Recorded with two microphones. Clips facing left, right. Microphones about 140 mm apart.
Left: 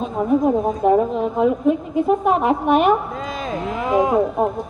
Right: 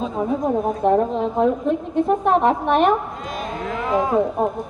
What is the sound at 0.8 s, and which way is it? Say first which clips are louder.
A woman's voice: left 1 dB; 5° left (ahead or behind).